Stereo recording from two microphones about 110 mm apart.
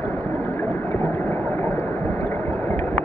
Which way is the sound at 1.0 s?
20° left (ahead or behind).